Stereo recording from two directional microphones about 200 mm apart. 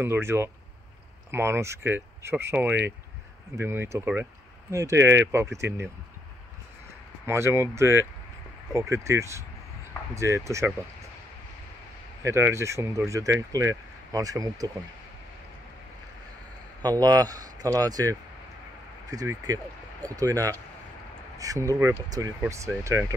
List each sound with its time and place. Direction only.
0.0 s speech: 10° right (ahead or behind)
7.2 s speech: 15° right (ahead or behind)
12.2 s speech: 15° right (ahead or behind)
16.8 s speech: 20° right (ahead or behind)